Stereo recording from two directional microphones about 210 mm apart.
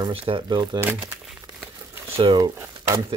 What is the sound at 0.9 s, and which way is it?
Crumpling, 5° right (ahead or behind).